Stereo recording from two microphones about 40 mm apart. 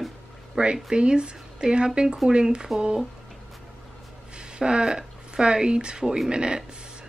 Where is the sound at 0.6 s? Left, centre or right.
Right.